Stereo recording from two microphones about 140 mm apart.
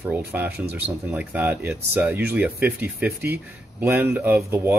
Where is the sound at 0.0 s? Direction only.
15° right (ahead or behind).